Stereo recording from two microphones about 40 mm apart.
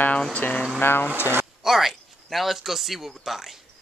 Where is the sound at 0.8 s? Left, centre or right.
Left.